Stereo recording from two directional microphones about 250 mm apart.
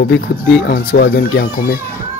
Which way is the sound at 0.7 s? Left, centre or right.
Left.